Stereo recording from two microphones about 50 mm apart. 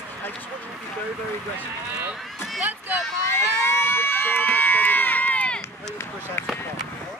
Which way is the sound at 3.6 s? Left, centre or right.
Left.